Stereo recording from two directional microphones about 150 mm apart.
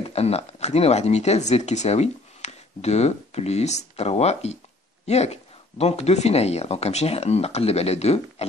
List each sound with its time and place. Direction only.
0.0 s speech: 45° left (ahead or behind)